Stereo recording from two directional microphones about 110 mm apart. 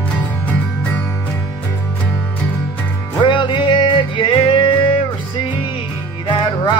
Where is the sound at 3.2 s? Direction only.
45° left (ahead or behind).